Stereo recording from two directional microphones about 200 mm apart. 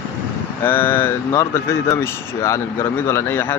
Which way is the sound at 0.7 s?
10° left (ahead or behind).